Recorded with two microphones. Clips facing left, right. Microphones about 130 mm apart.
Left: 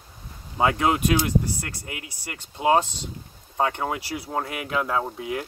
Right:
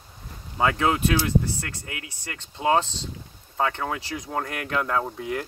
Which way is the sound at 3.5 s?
25° left (ahead or behind).